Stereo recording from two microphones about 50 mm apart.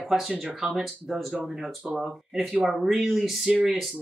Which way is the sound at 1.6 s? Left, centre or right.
Centre.